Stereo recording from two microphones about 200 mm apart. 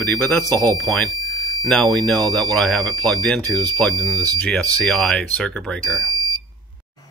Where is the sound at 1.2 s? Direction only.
90° left.